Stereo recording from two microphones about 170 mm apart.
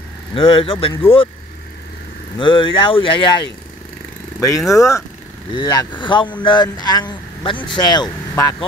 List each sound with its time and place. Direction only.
0.3 s speech: 30° left (ahead or behind)
2.3 s speech: 30° left (ahead or behind)
4.4 s speech: 20° left (ahead or behind)